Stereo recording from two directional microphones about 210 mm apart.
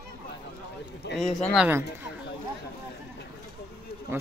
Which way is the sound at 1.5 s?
5° right (ahead or behind).